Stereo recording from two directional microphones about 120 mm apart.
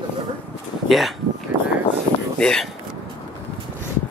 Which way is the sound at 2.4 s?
5° left (ahead or behind).